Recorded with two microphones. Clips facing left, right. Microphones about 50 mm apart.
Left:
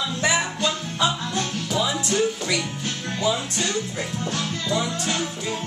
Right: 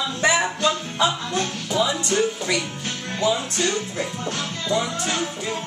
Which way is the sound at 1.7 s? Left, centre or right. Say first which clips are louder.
Right 2 dB; centre.